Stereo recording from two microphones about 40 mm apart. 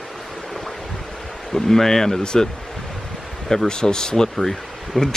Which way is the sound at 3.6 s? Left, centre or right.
Centre.